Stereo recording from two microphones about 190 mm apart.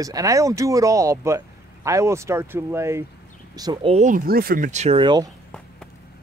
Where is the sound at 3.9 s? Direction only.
40° right (ahead or behind); by 5.3 s 25° right (ahead or behind).